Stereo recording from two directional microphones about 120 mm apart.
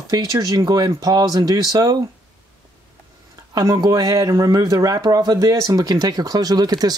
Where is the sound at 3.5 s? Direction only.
30° right (ahead or behind).